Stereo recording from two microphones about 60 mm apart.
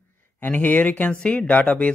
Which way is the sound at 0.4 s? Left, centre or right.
Left.